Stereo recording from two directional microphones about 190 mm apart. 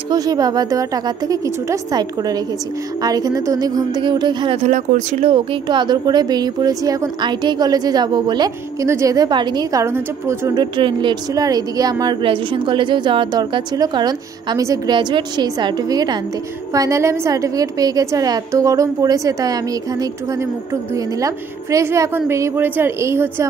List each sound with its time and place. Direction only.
0.1 s speech: 20° right (ahead or behind); by 5.3 s 40° right (ahead or behind)
5.3 s a woman's voice: 25° right (ahead or behind)